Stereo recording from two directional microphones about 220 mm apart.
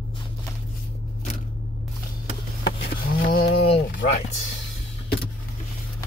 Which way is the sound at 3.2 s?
45° left (ahead or behind).